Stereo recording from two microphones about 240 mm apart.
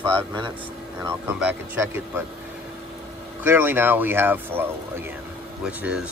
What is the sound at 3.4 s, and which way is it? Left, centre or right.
Speech, centre.